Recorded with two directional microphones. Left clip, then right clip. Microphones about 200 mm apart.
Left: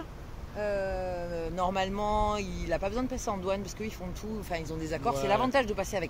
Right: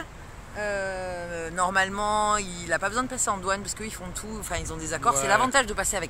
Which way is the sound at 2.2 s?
10° left (ahead or behind).